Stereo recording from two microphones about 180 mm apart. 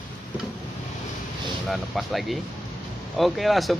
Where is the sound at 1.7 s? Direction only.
Centre (ahead or behind).